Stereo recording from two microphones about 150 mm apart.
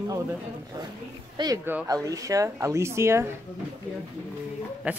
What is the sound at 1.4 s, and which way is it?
Speech, 30° right (ahead or behind).